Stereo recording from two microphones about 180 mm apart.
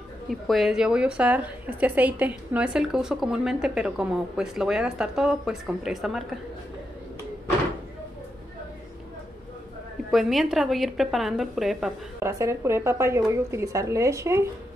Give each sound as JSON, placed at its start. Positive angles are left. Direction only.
{"t": 0.3, "sound": "a woman's voice", "side_deg": 0}
{"t": 10.1, "sound": "a woman's voice", "side_deg": 0}
{"t": 12.2, "sound": "a woman's voice", "side_deg": -15}